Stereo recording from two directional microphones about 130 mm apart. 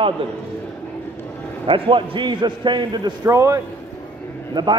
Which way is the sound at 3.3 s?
25° right (ahead or behind).